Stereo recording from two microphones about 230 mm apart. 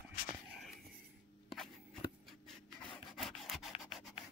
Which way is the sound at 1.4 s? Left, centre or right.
Centre.